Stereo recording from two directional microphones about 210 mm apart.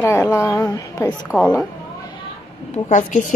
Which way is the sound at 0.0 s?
10° left (ahead or behind).